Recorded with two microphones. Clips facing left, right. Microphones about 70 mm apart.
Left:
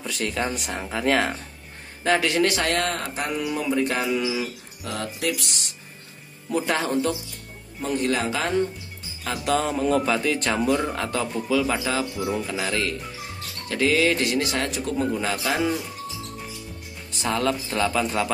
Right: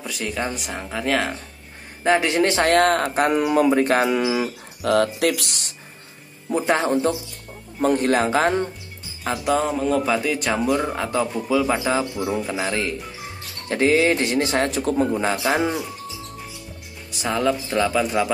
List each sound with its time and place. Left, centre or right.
0.0 s speech: centre
2.0 s speech: right
4.9 s speech: right
6.5 s speech: right
7.8 s speech: right
9.4 s a man's voice: centre
12.0 s speech: centre
12.4 s speech: right
15.1 s speech: right
17.2 s a man's voice: centre